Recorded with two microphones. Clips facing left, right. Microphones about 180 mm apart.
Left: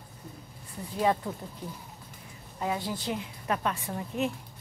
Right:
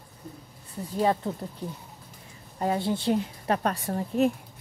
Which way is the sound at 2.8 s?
30° right (ahead or behind).